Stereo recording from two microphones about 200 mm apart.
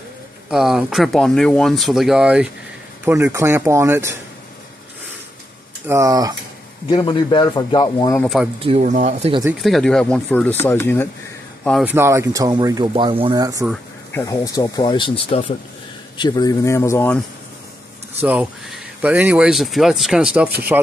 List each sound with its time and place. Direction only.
0.5 s speech: centre (ahead or behind)
5.9 s speech: 15° right (ahead or behind)
6.9 s speech: 25° left (ahead or behind)
8.2 s speech: centre (ahead or behind)
8.5 s speech: 30° right (ahead or behind)
9.6 s speech: centre (ahead or behind)
11.8 s speech: 10° right (ahead or behind)
14.1 s speech: 15° left (ahead or behind)
18.2 s speech: 5° right (ahead or behind)